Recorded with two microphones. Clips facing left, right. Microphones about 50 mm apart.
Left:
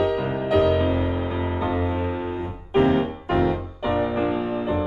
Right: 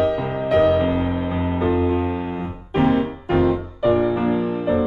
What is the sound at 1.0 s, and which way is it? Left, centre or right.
Music, right.